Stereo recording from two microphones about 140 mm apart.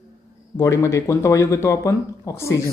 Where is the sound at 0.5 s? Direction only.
20° left (ahead or behind).